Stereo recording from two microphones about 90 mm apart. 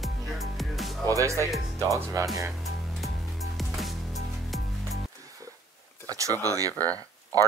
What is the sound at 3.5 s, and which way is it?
Music, centre (ahead or behind).